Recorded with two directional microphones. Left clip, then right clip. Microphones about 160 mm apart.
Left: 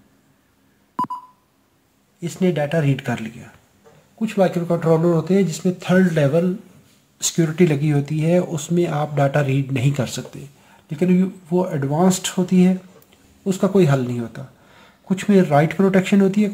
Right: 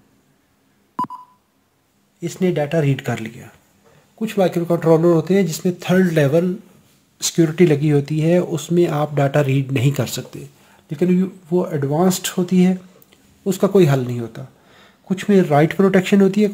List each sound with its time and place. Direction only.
1.0 s beep: centre (ahead or behind)
2.1 s speech: 30° right (ahead or behind)